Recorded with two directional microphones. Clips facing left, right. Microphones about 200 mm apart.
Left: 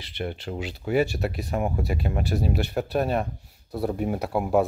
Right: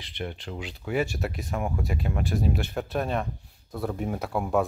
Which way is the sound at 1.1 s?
Centre (ahead or behind).